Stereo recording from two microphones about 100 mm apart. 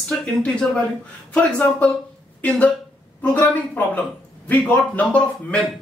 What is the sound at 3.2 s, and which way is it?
A man's voice, 15° left (ahead or behind).